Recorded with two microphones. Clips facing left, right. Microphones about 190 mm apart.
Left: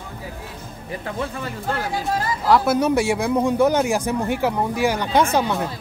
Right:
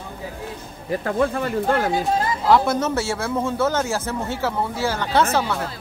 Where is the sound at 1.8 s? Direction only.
25° right (ahead or behind).